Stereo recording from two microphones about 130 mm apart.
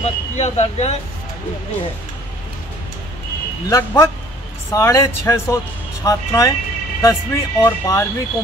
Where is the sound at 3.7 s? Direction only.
25° left (ahead or behind).